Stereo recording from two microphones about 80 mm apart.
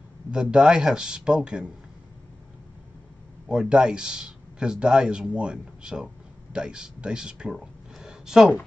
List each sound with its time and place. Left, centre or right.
0.3 s a man's voice: centre
3.4 s a man's voice: centre